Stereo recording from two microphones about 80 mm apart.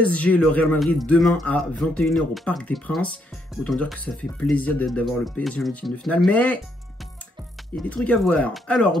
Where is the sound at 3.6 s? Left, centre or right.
Centre.